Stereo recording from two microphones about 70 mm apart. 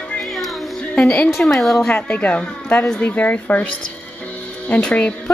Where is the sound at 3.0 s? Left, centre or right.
Centre.